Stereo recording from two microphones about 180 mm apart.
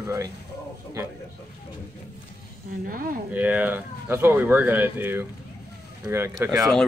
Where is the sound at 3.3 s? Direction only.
10° right (ahead or behind).